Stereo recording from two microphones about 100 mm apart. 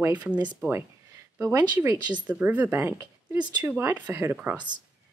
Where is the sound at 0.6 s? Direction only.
25° right (ahead or behind).